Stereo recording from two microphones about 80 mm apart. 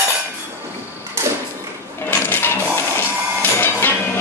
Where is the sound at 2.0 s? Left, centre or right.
Left.